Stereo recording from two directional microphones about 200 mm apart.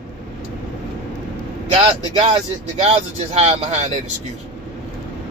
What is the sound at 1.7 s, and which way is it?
Speech, 25° right (ahead or behind).